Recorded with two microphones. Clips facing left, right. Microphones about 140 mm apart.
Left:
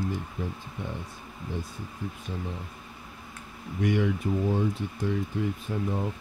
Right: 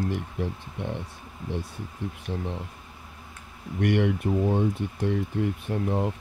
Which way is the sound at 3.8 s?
65° right (ahead or behind).